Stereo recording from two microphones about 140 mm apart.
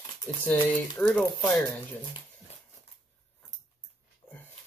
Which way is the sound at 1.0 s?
15° left (ahead or behind).